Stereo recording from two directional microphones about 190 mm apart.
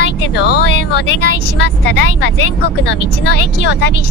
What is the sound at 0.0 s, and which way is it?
Speech, 60° left (ahead or behind).